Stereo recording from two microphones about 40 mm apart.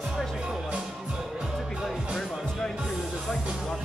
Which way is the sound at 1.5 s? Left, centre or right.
Centre.